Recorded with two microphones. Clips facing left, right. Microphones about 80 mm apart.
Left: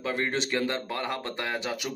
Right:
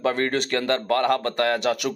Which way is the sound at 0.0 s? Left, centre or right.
Right.